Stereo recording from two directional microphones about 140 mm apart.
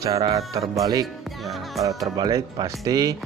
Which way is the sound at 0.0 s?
25° right (ahead or behind).